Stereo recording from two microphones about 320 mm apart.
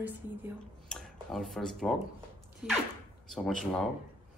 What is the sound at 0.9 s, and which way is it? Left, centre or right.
Speech, centre.